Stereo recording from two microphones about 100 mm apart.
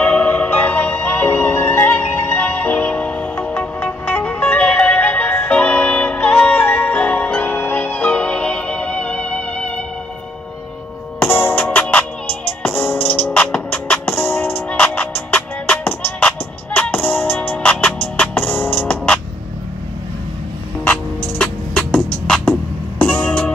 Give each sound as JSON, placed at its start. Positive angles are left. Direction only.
{"t": 0.0, "sound": "music", "side_deg": 15}
{"t": 11.1, "sound": "music", "side_deg": 20}
{"t": 20.8, "sound": "music", "side_deg": 15}